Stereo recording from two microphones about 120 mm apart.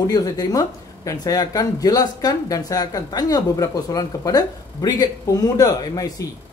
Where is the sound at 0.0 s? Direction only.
30° left (ahead or behind).